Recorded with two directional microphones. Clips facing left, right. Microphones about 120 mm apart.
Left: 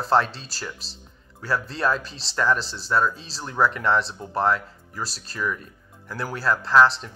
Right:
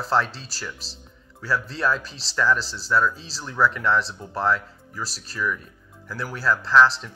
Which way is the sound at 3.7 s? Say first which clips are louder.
Even; 40° left (ahead or behind).